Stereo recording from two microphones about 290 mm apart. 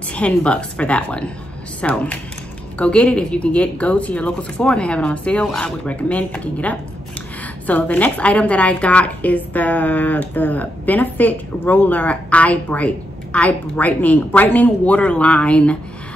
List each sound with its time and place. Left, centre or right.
0.1 s a woman's voice: centre